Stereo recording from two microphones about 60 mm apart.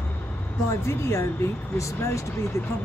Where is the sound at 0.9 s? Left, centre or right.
Left.